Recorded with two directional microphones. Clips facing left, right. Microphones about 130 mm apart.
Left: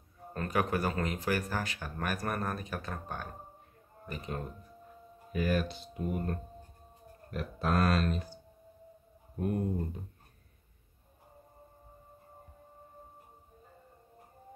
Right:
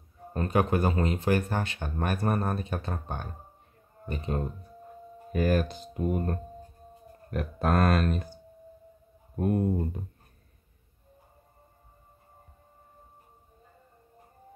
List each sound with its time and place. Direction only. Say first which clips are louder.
0.3 s a man's voice: right 5 dB; 30° right (ahead or behind)
5.3 s speech: right 5 dB; 45° right (ahead or behind)
7.2 s speech: right 5 dB; 50° right (ahead or behind)
9.4 s speech: right 6 dB; 50° right (ahead or behind)